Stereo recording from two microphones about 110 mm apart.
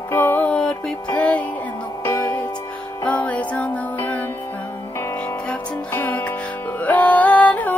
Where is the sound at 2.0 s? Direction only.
25° left (ahead or behind).